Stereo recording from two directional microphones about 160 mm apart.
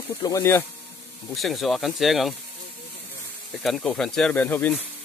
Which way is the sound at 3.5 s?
Centre (ahead or behind).